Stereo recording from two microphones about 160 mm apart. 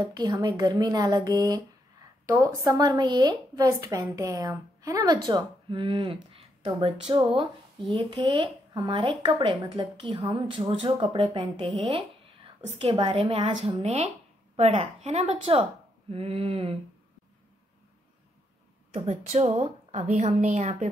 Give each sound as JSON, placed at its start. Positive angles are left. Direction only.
{"t": 0.1, "sound": "a woman's voice", "side_deg": -25}
{"t": 18.9, "sound": "a woman's voice", "side_deg": -45}